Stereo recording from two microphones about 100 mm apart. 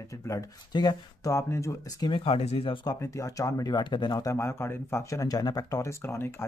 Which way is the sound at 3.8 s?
50° left (ahead or behind).